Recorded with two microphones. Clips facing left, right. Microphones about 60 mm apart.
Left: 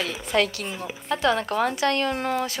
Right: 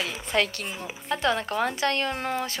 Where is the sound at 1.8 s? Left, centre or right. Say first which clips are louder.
Left 3 dB; right.